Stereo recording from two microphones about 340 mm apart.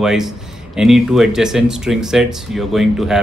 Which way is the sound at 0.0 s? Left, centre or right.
Centre.